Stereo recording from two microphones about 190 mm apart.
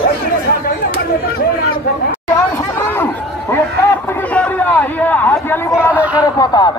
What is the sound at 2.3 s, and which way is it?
Chatter, 10° left (ahead or behind).